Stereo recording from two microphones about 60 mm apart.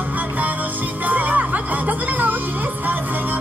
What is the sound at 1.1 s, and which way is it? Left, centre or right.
Music, right.